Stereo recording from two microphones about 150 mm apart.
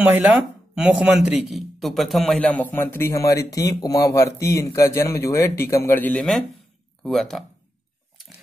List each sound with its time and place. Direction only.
0.0 s speech: 10° right (ahead or behind)
2.7 s speech: 15° left (ahead or behind)
6.1 s speech: centre (ahead or behind)